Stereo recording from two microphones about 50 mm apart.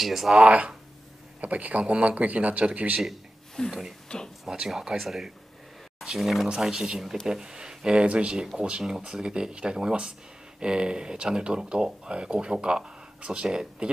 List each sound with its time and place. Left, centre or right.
0.0 s speech: centre
0.4 s speech: centre
3.6 s speech: centre
4.5 s speech: centre